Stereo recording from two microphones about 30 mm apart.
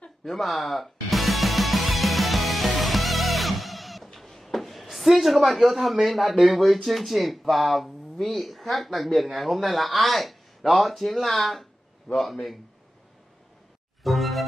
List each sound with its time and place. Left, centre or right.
0.2 s music: centre
5.5 s speech: centre
14.0 s music: centre